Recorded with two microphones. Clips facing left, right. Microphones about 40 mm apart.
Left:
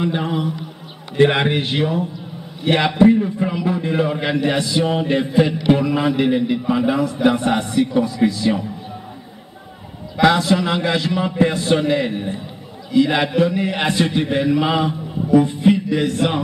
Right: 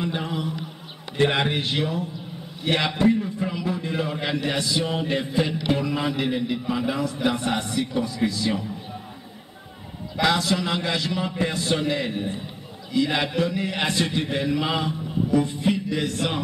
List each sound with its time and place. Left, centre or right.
0.0 s a man's voice: left
10.2 s a man's voice: left